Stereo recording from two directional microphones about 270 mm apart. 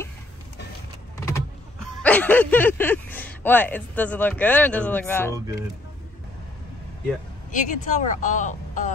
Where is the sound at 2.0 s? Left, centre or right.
Centre.